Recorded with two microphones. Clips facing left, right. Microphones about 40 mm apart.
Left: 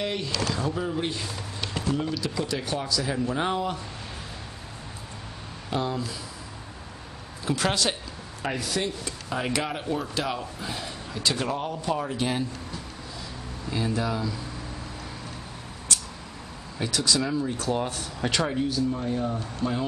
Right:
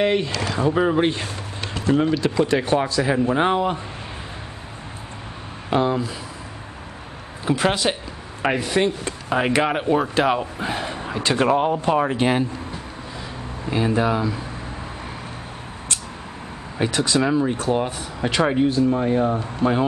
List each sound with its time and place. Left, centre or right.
0.0 s speech: right
0.7 s speech: right
5.7 s speech: right
7.4 s speech: right
8.4 s speech: right
16.7 s speech: right
17.7 s speech: centre
18.4 s speech: right